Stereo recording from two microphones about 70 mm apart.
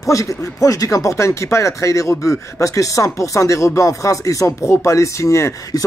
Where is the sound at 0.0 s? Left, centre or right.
Left.